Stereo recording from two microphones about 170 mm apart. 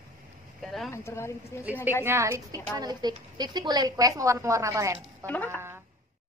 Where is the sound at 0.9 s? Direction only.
15° left (ahead or behind).